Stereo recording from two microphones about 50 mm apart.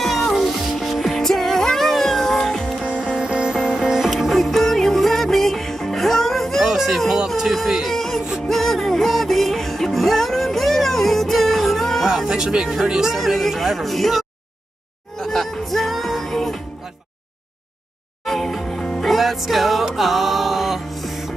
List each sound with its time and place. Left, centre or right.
0.0 s music: centre
2.8 s music: right
4.1 s music: centre
7.2 s a sound: centre
7.9 s music: centre
12.3 s speech: centre
13.2 s speech: centre
15.1 s music: centre
18.2 s music: centre